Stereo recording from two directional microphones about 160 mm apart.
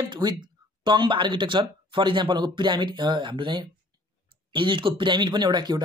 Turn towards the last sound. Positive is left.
turn(degrees=-30)  # may be behind; listen again after turning